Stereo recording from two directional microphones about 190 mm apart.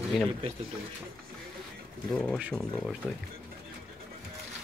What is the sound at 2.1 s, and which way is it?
Speech, centre (ahead or behind).